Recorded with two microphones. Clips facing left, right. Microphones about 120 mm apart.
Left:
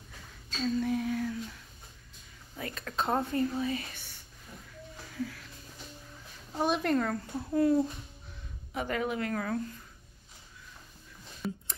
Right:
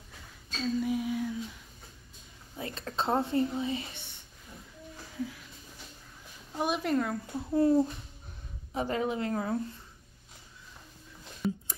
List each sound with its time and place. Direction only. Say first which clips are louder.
0.7 s a sound: even; 5° right (ahead or behind)
2.5 s speech: even; 25° right (ahead or behind)
5.1 s music: even; 15° right (ahead or behind)
6.6 s speech: left 1 dB; 5° right (ahead or behind)
7.5 s a woman's voice: right 1 dB; 25° right (ahead or behind)
11.4 s a sound: right 5 dB; centre (ahead or behind)